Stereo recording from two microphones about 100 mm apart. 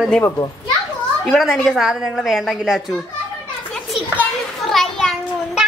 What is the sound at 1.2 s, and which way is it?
A woman's voice, centre (ahead or behind).